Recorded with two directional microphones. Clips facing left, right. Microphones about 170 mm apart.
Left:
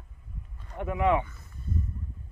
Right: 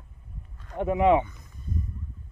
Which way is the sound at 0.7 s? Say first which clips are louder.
Right 5 dB; 20° right (ahead or behind).